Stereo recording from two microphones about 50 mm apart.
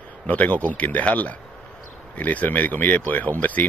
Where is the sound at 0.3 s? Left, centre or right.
Left.